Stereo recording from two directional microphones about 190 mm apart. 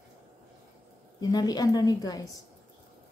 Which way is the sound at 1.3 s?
20° left (ahead or behind).